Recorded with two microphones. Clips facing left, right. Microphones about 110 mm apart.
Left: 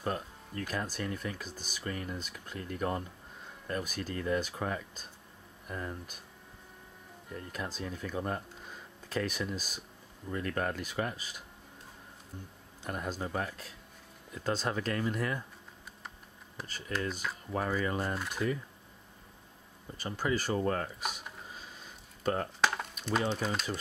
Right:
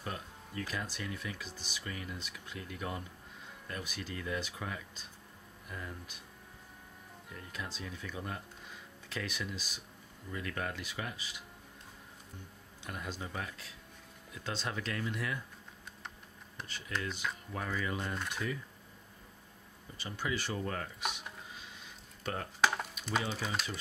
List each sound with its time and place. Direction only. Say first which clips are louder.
0.0 s speech: left 7 dB; 50° left (ahead or behind)
7.5 s speech: left 4 dB; 45° left (ahead or behind)
12.8 s speech: left 6 dB; 45° left (ahead or behind)
17.5 s speech: left 7 dB; 40° left (ahead or behind)
18.1 s speech: left 2 dB; 5° left (ahead or behind)
20.0 s speech: left 5 dB; 45° left (ahead or behind)
21.5 s a sound: left 2 dB; 40° left (ahead or behind)
22.6 s a sound: even; 5° right (ahead or behind)
23.3 s speech: left 4 dB; centre (ahead or behind)